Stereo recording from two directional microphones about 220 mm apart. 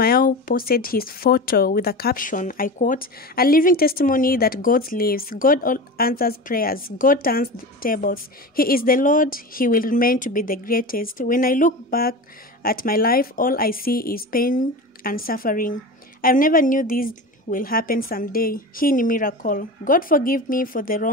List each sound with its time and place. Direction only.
0.0 s speech: 40° left (ahead or behind)